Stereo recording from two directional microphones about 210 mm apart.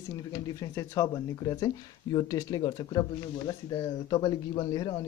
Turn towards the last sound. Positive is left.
turn(degrees=20)  # may be behind; listen again after turning